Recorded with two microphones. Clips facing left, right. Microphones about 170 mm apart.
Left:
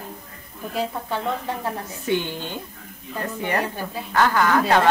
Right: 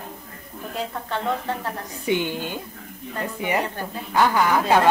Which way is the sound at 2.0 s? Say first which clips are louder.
Right 1 dB; 15° right (ahead or behind).